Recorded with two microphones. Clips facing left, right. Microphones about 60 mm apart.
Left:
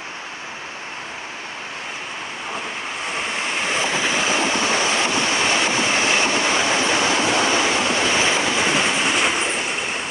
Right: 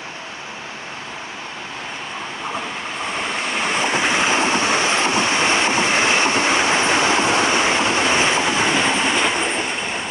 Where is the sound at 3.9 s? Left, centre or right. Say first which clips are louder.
Right 4 dB; right.